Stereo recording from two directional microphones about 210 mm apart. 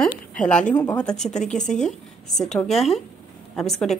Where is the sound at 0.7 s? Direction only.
15° left (ahead or behind).